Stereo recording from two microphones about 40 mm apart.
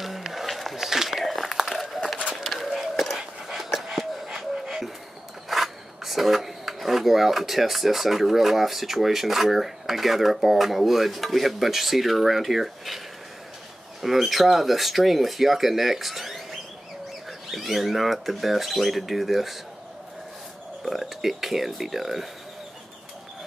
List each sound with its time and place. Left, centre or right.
0.0 s crumpling: centre
2.4 s a sound: centre
3.2 s a sound: centre
5.5 s speech: centre
14.0 s speech: centre
17.5 s speech: centre
20.8 s speech: centre